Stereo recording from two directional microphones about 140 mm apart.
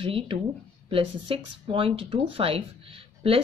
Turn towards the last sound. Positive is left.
turn(degrees=-40)  # may be behind; listen again after turning